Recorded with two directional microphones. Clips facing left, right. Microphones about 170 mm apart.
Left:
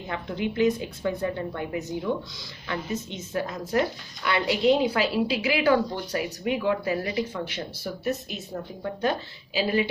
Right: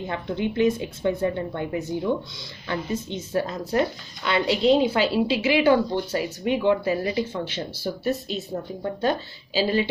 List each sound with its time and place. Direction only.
0.0 s a woman's voice: 25° right (ahead or behind)